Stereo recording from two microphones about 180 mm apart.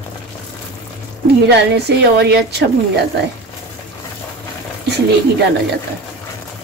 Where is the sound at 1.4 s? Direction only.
65° right (ahead or behind).